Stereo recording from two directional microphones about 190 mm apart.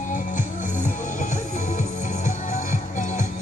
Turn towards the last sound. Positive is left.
turn(degrees=40)  # may be behind; listen again after turning